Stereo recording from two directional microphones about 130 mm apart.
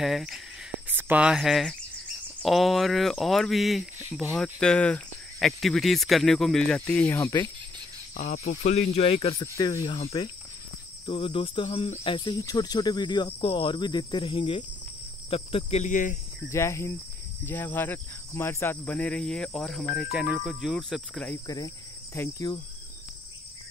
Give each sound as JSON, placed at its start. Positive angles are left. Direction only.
{"t": 0.0, "sound": "speech", "side_deg": -5}
{"t": 8.2, "sound": "cricket", "side_deg": 60}
{"t": 9.4, "sound": "speech", "side_deg": 30}
{"t": 9.8, "sound": "cricket", "side_deg": 50}
{"t": 12.0, "sound": "speech", "side_deg": 40}
{"t": 15.2, "sound": "cricket", "side_deg": 45}
{"t": 15.8, "sound": "speech", "side_deg": 80}
{"t": 16.4, "sound": "speech", "side_deg": 20}
{"t": 21.5, "sound": "insect", "side_deg": 25}